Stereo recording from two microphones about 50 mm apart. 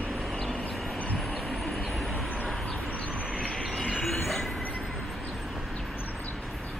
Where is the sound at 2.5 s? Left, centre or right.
Left.